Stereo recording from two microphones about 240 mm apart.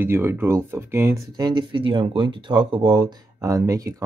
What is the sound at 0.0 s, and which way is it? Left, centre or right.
Speech, centre.